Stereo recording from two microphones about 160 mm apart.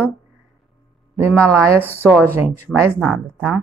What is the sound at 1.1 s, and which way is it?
Speech, 15° right (ahead or behind).